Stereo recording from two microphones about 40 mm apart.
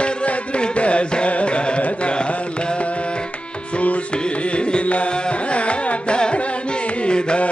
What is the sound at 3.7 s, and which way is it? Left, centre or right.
Carnatic music, left.